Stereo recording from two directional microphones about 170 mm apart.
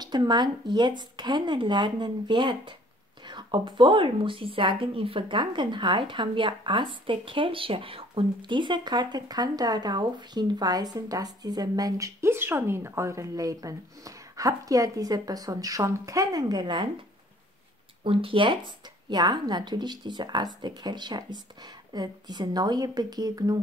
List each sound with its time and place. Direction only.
0.0 s a woman's voice: 25° right (ahead or behind)
18.0 s a woman's voice: 30° right (ahead or behind)